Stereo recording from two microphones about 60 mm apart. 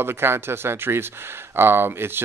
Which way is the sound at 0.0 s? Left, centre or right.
Right.